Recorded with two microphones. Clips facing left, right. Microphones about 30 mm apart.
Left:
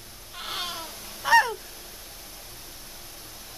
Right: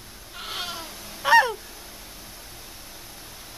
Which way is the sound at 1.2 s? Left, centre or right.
Centre.